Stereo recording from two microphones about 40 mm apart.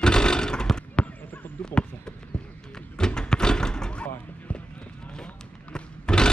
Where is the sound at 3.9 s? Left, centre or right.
Left.